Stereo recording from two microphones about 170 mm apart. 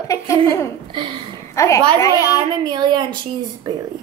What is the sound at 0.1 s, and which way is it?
A woman's voice, 15° left (ahead or behind).